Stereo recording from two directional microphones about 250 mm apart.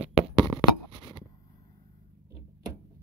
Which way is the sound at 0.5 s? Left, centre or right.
Centre.